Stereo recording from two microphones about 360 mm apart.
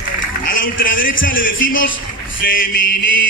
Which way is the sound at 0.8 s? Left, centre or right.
Left.